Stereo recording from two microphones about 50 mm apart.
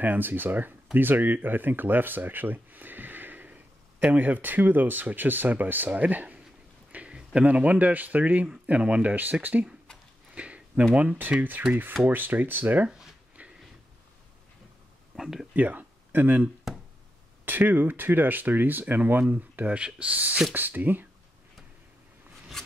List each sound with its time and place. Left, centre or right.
0.0 s speech: right
6.9 s a sound: right
7.4 s speech: right
10.3 s a sound: right
11.0 s speech: right
13.4 s a sound: right
15.1 s speech: centre
15.5 s speech: right
16.7 s music: centre
17.5 s speech: right